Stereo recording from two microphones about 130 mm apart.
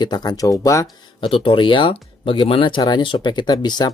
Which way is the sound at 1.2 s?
40° left (ahead or behind).